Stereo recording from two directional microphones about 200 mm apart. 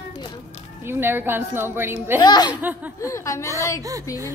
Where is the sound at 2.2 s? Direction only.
20° left (ahead or behind).